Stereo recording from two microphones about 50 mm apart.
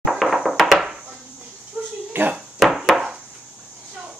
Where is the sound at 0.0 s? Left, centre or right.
Centre.